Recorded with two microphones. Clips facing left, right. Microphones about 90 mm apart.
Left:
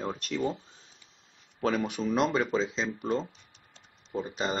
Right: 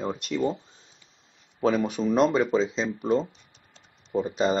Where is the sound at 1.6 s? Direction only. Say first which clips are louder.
Right 5 dB; 10° right (ahead or behind).